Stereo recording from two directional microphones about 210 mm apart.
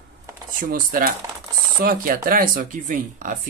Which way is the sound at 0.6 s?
40° right (ahead or behind).